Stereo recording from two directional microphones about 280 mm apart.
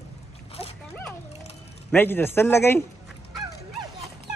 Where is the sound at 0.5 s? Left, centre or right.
Left.